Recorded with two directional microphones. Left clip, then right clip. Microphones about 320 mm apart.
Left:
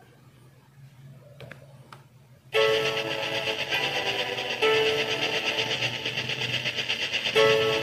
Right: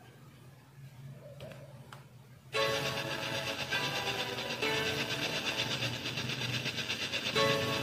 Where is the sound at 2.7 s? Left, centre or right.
Left.